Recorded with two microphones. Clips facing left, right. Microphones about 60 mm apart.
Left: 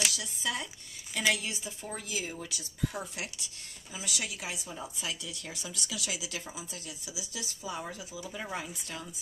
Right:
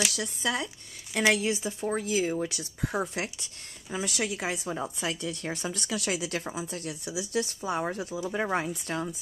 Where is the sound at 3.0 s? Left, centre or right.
Right.